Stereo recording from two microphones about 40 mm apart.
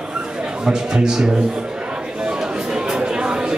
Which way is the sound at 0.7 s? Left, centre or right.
Centre.